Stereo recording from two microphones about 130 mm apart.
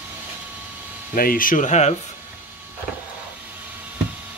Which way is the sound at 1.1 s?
90° left.